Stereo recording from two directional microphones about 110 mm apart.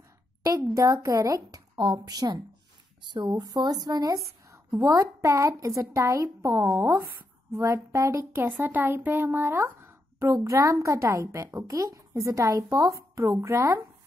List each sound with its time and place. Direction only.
0.4 s speech: 30° right (ahead or behind)